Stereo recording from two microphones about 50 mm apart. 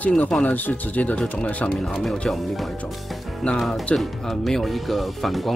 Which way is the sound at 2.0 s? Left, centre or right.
Centre.